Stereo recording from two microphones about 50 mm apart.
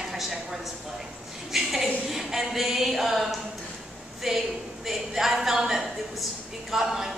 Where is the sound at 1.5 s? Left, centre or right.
Centre.